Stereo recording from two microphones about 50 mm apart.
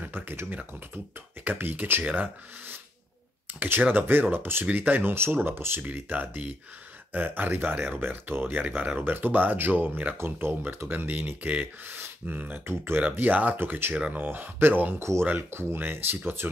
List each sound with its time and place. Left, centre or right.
0.1 s speech: right
5.9 s speech: right
10.1 s speech: right
11.1 s speech: right
13.2 s speech: right
15.0 s speech: right
15.2 s speech: right